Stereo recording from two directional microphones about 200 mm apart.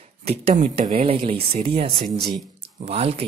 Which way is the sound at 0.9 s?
30° right (ahead or behind).